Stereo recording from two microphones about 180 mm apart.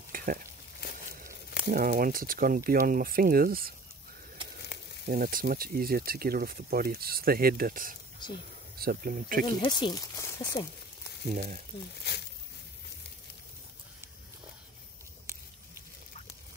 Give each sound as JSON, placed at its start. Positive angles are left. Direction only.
{"t": 0.1, "sound": "stir", "side_deg": -50}
{"t": 1.7, "sound": "speech", "side_deg": -50}
{"t": 5.0, "sound": "speech", "side_deg": -50}
{"t": 9.6, "sound": "speech", "side_deg": 25}
{"t": 11.3, "sound": "speech", "side_deg": -45}
{"t": 12.0, "sound": "a sound", "side_deg": 65}